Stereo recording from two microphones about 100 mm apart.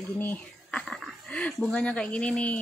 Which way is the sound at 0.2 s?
15° left (ahead or behind).